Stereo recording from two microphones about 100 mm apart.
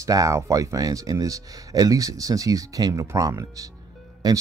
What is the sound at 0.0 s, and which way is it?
Speech, 35° right (ahead or behind).